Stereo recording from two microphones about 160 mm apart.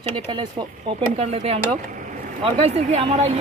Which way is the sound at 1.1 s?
40° right (ahead or behind).